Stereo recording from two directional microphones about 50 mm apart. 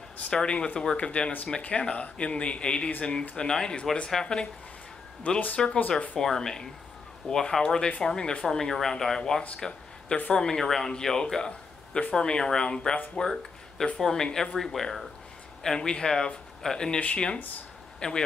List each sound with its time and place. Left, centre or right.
0.3 s speech: centre
5.9 s speech: left
6.1 s speech: centre
9.6 s a sound: centre
10.3 s speech: centre
13.2 s a sound: centre
13.9 s speech: centre